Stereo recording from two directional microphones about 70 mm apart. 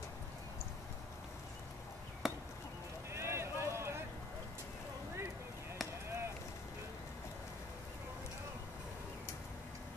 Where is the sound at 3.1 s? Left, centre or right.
Right.